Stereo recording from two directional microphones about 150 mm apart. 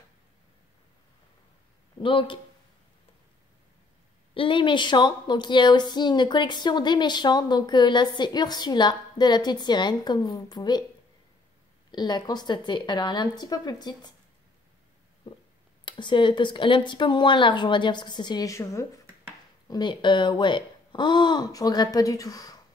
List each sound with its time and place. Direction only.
2.0 s speech: 35° left (ahead or behind)
4.3 s a woman's voice: 35° left (ahead or behind)
11.9 s a woman's voice: 30° left (ahead or behind)
15.8 s speech: 30° left (ahead or behind)
19.7 s a woman's voice: 30° left (ahead or behind)